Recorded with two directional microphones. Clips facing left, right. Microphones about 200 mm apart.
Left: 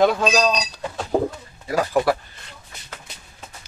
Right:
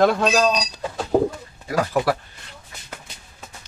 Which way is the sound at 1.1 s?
5° right (ahead or behind).